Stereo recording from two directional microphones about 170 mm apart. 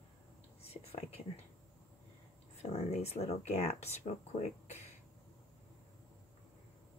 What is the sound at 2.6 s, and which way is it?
Speech, 40° left (ahead or behind).